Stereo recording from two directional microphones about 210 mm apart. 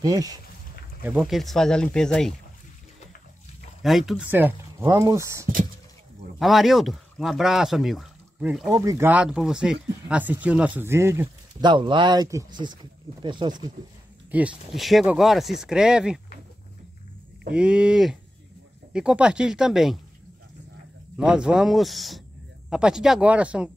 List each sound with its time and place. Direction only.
0.0 s speech: 15° right (ahead or behind)
1.0 s speech: 5° right (ahead or behind)
3.8 s speech: centre (ahead or behind)
6.4 s speech: centre (ahead or behind)
11.7 s speech: 20° right (ahead or behind)
14.3 s speech: 5° right (ahead or behind)
17.5 s speech: 5° right (ahead or behind)
21.2 s speech: 5° right (ahead or behind)